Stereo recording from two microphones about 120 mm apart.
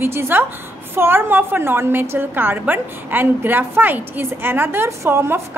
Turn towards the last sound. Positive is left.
turn(degrees=-20)  # may be behind; listen again after turning